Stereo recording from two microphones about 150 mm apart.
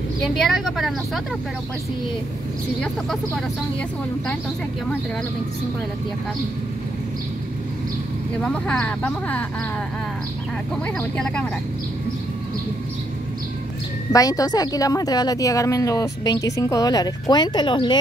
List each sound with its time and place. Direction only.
0.2 s speech: centre (ahead or behind)
8.4 s speech: 10° left (ahead or behind)
11.0 s speech: 5° left (ahead or behind)
14.1 s speech: 25° left (ahead or behind)